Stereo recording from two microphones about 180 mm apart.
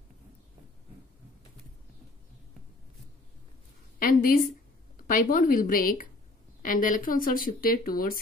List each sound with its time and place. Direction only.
4.0 s a woman's voice: 50° left (ahead or behind)